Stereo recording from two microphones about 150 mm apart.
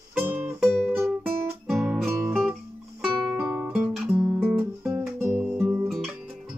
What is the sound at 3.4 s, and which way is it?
Guitar, 10° right (ahead or behind).